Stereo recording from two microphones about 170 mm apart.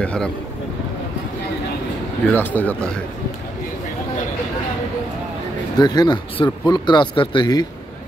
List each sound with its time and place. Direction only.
0.0 s speech: 5° left (ahead or behind)
2.3 s speech: 10° left (ahead or behind)
5.8 s speech: 25° left (ahead or behind)